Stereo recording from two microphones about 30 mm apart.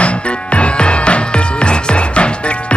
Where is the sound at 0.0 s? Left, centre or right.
Left.